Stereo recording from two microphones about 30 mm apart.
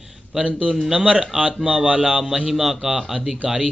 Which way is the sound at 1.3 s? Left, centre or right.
Right.